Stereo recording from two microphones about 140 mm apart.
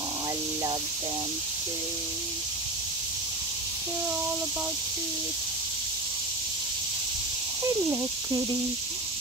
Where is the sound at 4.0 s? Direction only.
10° right (ahead or behind).